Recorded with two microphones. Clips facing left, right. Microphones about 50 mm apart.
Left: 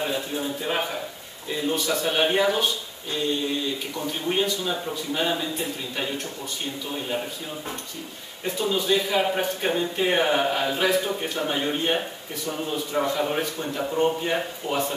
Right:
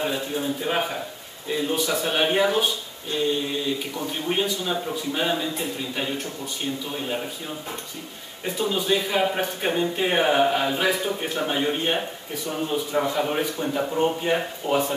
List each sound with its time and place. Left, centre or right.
0.0 s a man's voice: centre
4.3 s a man's voice: centre
6.9 s speech: centre
8.5 s a man's voice: centre